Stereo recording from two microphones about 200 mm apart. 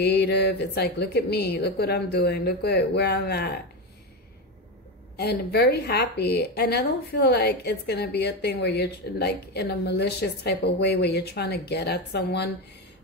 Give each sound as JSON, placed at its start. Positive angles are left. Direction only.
{"t": 0.0, "sound": "a woman's voice", "side_deg": 55}
{"t": 5.1, "sound": "a woman's voice", "side_deg": 55}